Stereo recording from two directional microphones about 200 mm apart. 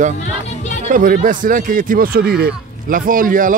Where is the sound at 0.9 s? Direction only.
40° right (ahead or behind).